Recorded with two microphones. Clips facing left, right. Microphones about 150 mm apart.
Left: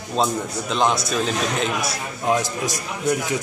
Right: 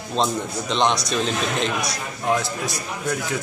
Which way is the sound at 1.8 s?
20° left (ahead or behind).